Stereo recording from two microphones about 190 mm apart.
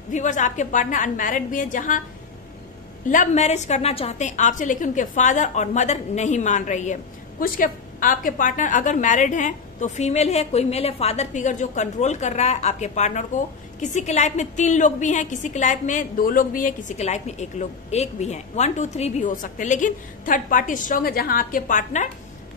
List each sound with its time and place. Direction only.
0.1 s a woman's voice: 40° left (ahead or behind)
3.1 s a woman's voice: 40° left (ahead or behind)